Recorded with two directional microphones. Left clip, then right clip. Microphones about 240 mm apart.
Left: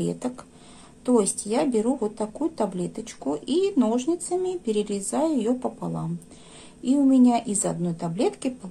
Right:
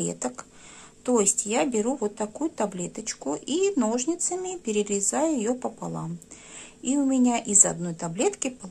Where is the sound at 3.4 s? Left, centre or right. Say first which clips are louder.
Left 1 dB; right.